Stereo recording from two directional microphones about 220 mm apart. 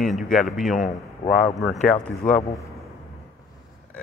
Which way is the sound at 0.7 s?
35° left (ahead or behind).